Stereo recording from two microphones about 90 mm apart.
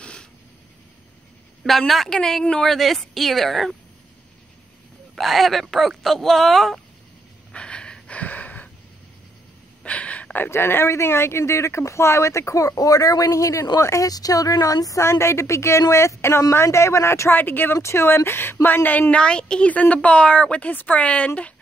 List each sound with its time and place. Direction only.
0.0 s a sound: 10° left (ahead or behind)
1.6 s a woman's voice: centre (ahead or behind)
5.1 s a woman's voice: centre (ahead or behind)
7.5 s gasp: 10° left (ahead or behind)
9.8 s a woman's voice: 15° left (ahead or behind)